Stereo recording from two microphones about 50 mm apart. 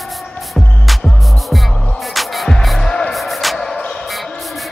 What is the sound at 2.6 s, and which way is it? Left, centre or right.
Music, centre.